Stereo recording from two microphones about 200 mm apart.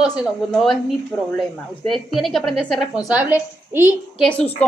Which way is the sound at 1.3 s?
Centre (ahead or behind).